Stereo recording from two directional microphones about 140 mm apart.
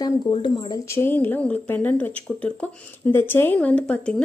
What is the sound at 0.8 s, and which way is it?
Speech, 15° left (ahead or behind).